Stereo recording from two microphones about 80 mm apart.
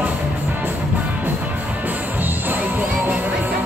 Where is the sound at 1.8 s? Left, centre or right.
Right.